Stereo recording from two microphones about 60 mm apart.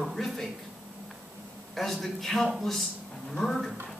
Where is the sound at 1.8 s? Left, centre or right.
Centre.